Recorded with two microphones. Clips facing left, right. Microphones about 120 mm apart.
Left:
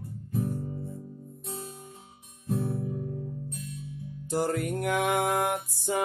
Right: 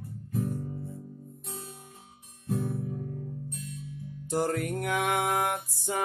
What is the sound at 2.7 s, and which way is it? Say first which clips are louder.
Music: left 2 dB; 25° left (ahead or behind).